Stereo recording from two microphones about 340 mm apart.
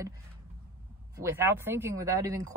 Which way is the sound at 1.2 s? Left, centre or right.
Centre.